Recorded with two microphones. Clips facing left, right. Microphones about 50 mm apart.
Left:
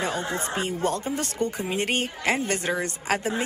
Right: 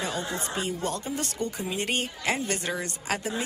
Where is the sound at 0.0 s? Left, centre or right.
Left.